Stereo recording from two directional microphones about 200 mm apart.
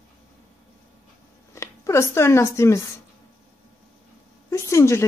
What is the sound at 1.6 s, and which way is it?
Speech, 15° left (ahead or behind).